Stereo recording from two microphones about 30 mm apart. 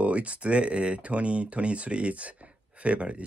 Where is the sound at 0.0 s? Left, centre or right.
Right.